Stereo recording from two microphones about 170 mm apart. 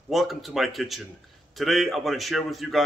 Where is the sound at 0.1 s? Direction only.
Centre (ahead or behind).